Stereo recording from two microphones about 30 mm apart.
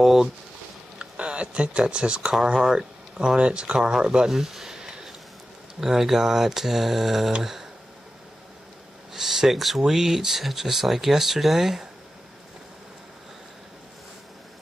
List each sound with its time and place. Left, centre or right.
0.0 s a sound: centre
1.1 s speech: right
3.3 s speech: right
4.3 s a sound: centre
5.8 s speech: centre
9.1 s speech: centre
9.5 s speech: centre